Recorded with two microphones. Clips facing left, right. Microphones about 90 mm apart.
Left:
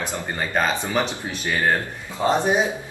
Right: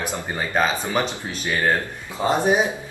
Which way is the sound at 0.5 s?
5° right (ahead or behind).